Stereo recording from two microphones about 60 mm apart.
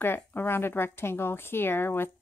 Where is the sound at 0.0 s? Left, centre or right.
Left.